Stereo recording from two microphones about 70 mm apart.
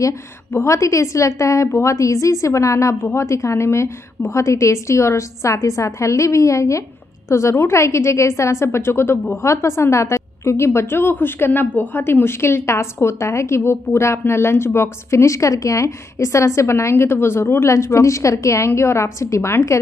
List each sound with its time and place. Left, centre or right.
0.5 s a woman's voice: left